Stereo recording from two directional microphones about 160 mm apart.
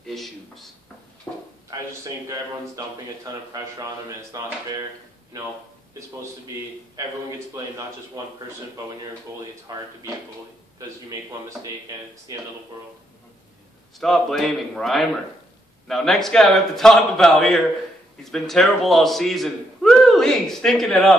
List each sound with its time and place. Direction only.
0.0 s a sound: centre (ahead or behind)
1.3 s drawer open or close: 15° left (ahead or behind)
1.7 s a man's voice: 20° right (ahead or behind)
4.3 s a man's voice: 20° right (ahead or behind)
7.3 s a man's voice: 20° right (ahead or behind)
9.7 s a man's voice: 20° right (ahead or behind)
13.9 s a man's voice: centre (ahead or behind)